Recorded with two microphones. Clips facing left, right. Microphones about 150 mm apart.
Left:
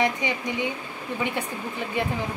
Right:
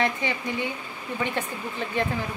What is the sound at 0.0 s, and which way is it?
Speech, 15° left (ahead or behind).